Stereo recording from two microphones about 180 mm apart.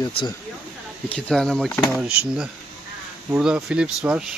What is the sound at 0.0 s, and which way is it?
Speech, 25° left (ahead or behind).